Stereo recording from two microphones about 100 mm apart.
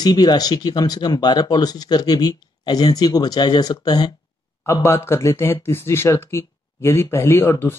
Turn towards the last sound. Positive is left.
turn(degrees=25)  # may be behind; listen again after turning